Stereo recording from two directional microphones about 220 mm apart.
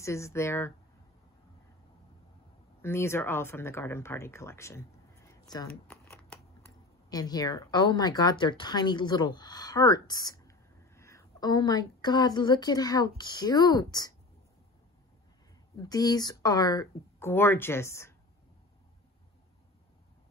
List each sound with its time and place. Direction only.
0.0 s speech: 15° left (ahead or behind)
2.8 s speech: 10° left (ahead or behind)
5.9 s shuffling cards: 5° left (ahead or behind)
7.1 s speech: 15° left (ahead or behind)
15.8 s speech: 15° left (ahead or behind)